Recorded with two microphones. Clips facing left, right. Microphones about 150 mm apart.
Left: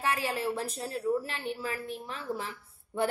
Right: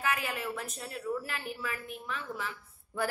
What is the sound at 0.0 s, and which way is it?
A woman's voice, 30° left (ahead or behind).